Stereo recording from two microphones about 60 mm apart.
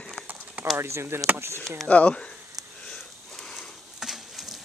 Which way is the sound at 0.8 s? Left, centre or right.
Right.